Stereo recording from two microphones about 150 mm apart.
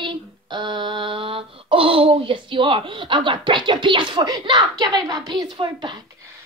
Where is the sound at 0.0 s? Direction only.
30° right (ahead or behind).